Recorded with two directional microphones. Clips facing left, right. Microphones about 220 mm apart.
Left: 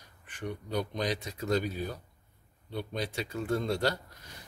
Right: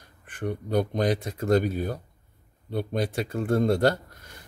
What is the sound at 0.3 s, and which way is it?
Speech, 50° right (ahead or behind).